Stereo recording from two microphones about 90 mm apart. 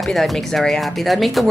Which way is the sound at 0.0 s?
Centre (ahead or behind).